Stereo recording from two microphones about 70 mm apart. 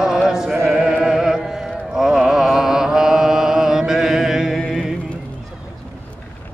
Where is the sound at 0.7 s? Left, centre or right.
Centre.